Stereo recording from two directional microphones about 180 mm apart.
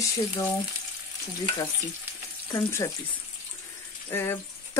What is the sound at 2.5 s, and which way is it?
Speech, 15° left (ahead or behind).